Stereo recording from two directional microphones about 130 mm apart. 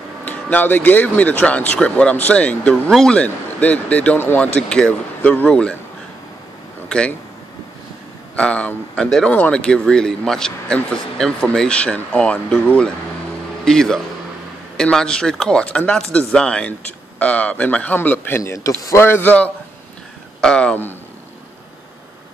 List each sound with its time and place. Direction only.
0.2 s speech: 10° left (ahead or behind)
6.9 s speech: 10° left (ahead or behind)
8.4 s a man's voice: 10° left (ahead or behind)